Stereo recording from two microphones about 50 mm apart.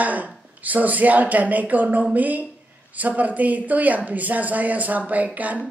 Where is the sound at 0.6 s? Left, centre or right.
Right.